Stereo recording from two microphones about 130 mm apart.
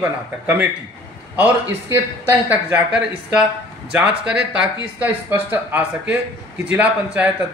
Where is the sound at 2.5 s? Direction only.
10° right (ahead or behind).